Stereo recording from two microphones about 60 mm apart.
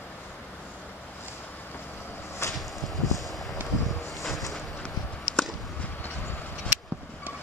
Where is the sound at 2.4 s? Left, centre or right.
Left.